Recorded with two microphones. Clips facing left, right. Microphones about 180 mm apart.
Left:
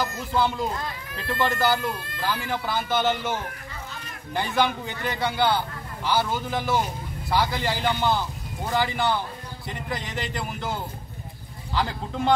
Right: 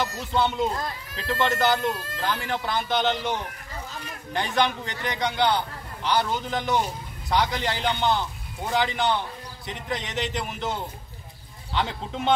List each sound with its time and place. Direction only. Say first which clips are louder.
0.3 s speech: right 1 dB; 20° right (ahead or behind)
1.2 s a man's voice: right 1 dB; 5° left (ahead or behind)
4.3 s a man's voice: even; 5° left (ahead or behind)